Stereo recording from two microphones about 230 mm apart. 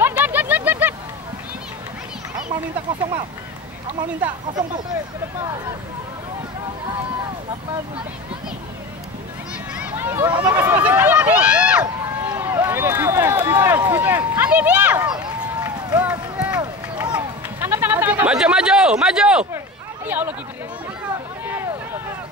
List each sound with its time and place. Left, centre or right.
0.0 s vehicle: centre
4.2 s speech: centre
9.8 s speech: centre
10.3 s speech: centre
10.6 s speech: centre
15.0 s run: centre
16.0 s run: centre
17.6 s speech: centre